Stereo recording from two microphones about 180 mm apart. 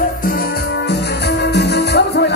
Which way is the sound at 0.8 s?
70° left (ahead or behind).